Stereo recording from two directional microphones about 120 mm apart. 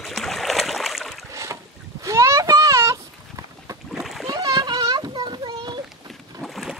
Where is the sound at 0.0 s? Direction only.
Centre (ahead or behind).